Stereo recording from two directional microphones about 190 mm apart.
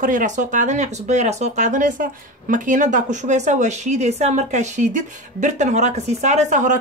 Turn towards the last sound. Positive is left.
turn(degrees=-40)  # may be behind; listen again after turning